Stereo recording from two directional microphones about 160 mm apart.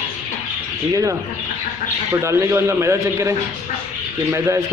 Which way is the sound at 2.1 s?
15° right (ahead or behind).